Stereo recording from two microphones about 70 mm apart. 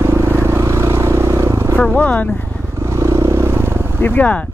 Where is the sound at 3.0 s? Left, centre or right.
Right.